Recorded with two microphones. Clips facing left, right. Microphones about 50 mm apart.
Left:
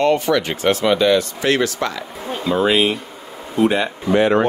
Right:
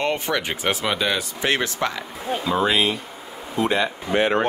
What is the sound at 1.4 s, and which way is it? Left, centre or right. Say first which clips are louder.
Speech: left 4 dB; right.